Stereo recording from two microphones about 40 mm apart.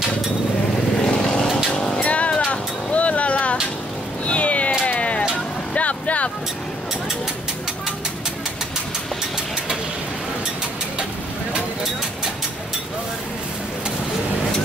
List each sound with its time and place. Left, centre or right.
1.0 s vehicle: centre
2.0 s vehicle: left
4.8 s music: left
5.3 s vehicle: left